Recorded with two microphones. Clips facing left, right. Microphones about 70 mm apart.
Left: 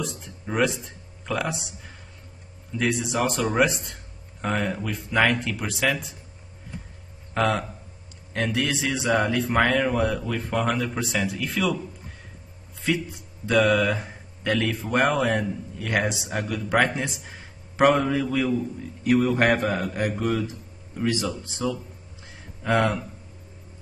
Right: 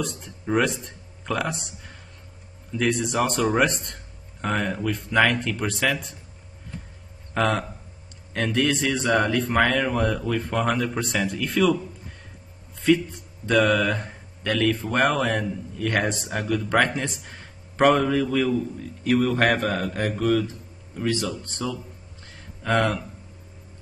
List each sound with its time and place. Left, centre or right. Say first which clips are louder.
0.0 s a man's voice: right 2 dB; centre
7.3 s a man's voice: even; centre
12.8 s speech: right 6 dB; centre
14.5 s a man's voice: right 1 dB; centre
20.9 s a man's voice: even; centre
22.2 s a sound: left 1 dB; centre